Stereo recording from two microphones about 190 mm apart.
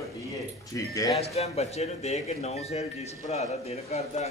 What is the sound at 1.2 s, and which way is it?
Speech, 35° left (ahead or behind).